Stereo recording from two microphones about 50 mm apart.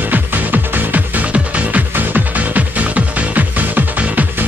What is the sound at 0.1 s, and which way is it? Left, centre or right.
Music, right.